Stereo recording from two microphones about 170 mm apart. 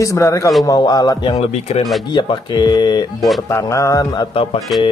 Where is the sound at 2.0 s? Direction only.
25° left (ahead or behind).